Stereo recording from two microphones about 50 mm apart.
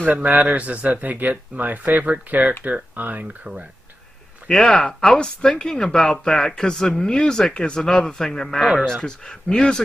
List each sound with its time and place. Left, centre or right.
0.1 s speech: right
4.5 s speech: centre